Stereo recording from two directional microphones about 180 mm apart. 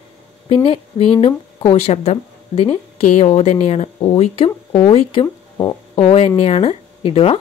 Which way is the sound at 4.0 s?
30° left (ahead or behind).